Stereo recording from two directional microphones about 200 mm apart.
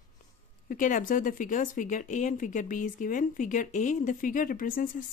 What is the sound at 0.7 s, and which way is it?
Speech, 40° left (ahead or behind).